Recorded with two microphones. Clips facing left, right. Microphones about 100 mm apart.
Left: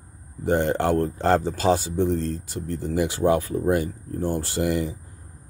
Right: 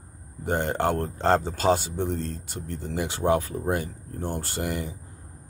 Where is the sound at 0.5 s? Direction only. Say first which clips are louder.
Left 4 dB; 35° right (ahead or behind).